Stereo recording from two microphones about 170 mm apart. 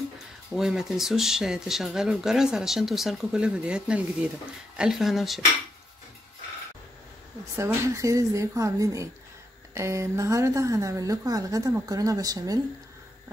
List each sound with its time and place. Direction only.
0.6 s speech: centre (ahead or behind)
7.5 s a woman's voice: 15° right (ahead or behind)